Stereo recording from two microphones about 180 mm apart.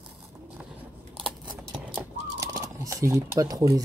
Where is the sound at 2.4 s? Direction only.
20° right (ahead or behind).